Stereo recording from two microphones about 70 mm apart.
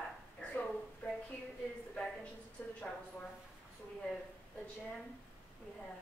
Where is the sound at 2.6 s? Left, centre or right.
Left.